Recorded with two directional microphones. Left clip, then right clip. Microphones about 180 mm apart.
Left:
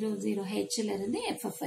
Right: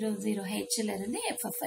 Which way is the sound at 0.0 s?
Centre (ahead or behind).